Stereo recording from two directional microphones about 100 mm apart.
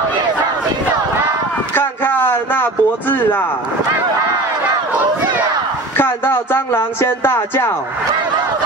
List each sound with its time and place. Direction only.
1.8 s speech: 20° left (ahead or behind)
5.9 s speech: 20° left (ahead or behind)